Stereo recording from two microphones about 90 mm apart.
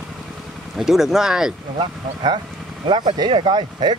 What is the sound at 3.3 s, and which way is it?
Speech, 70° right (ahead or behind).